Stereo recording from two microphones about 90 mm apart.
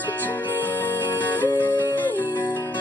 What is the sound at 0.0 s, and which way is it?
Music, 20° left (ahead or behind).